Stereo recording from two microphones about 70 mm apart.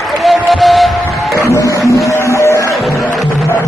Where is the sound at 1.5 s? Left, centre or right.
Left.